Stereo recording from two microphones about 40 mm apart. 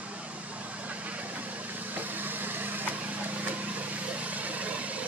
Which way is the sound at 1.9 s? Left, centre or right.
Right.